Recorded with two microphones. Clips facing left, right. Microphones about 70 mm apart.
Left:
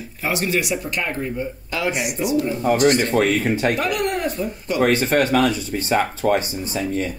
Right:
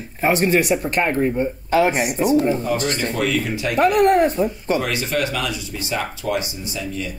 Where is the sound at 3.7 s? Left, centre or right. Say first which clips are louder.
Right 7 dB; right.